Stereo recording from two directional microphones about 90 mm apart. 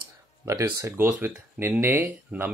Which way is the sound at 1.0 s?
20° right (ahead or behind).